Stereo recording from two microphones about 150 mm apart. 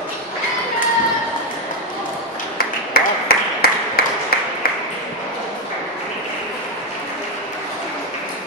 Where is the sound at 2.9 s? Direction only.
90° left.